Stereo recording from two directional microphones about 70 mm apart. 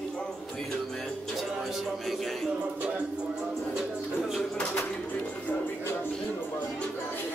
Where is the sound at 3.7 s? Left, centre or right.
Centre.